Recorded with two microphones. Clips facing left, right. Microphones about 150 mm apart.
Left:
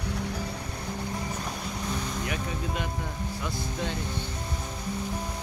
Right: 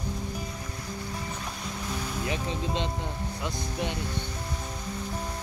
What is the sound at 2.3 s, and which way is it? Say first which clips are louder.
Music: right 2 dB; 25° right (ahead or behind).